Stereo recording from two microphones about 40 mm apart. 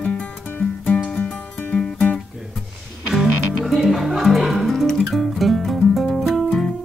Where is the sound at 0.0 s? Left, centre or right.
Left.